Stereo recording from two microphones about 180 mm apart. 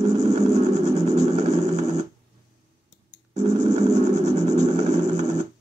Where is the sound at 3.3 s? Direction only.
40° right (ahead or behind).